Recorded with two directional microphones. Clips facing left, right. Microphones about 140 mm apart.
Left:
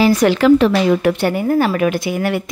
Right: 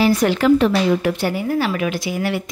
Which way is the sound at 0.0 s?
90° left.